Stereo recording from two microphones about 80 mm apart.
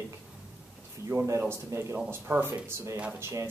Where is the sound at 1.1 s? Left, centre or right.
Right.